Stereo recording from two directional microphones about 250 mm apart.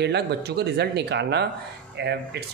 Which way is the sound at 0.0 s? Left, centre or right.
Right.